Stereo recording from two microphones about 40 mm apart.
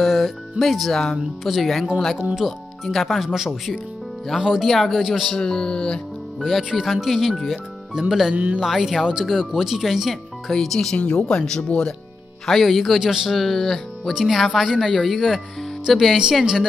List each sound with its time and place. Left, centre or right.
0.0 s speech: centre
4.6 s speech: centre
5.0 s speech: centre
5.4 s speech: centre
6.4 s speech: centre
10.5 s speech: centre
11.0 s speech: left
12.4 s speech: centre
13.0 s speech: centre
13.3 s speech: centre